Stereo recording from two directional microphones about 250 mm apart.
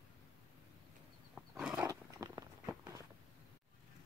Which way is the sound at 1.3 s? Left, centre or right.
Centre.